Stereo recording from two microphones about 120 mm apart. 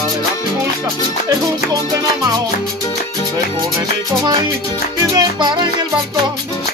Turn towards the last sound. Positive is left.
turn(degrees=-40)  # may be behind; listen again after turning